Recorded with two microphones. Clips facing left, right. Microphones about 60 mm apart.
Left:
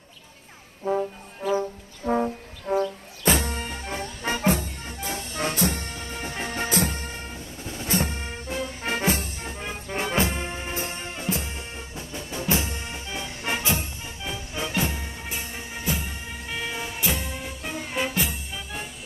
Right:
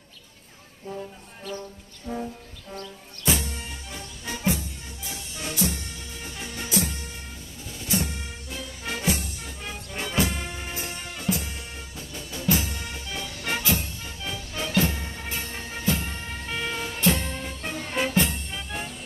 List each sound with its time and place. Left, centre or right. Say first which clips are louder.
2.0 s music: left 8 dB; left
3.3 s music: left 4 dB; left; by 18.9 s centre